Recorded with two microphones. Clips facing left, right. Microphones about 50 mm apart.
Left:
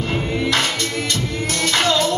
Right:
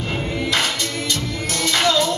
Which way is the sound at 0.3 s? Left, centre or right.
Left.